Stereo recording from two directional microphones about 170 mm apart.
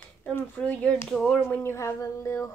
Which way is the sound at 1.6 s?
15° left (ahead or behind).